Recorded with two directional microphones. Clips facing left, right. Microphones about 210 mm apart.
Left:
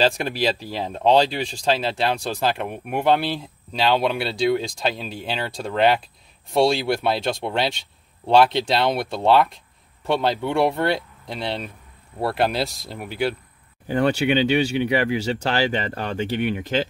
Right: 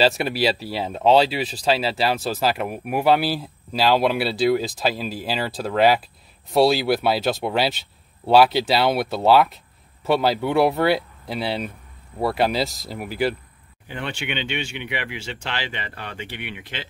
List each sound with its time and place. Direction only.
0.0 s speech: 5° right (ahead or behind)
13.8 s speech: 40° left (ahead or behind)